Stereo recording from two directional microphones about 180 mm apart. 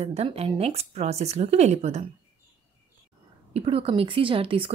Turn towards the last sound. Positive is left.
turn(degrees=-30)  # may be behind; listen again after turning